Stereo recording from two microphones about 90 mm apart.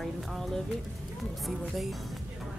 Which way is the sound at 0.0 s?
Centre (ahead or behind).